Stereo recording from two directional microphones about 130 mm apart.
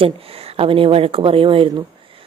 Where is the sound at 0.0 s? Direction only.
45° right (ahead or behind).